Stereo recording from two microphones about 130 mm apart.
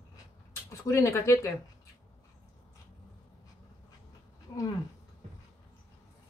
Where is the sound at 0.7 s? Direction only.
20° left (ahead or behind).